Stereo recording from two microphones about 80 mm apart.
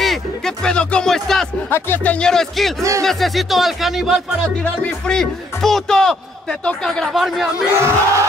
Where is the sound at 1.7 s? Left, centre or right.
Left.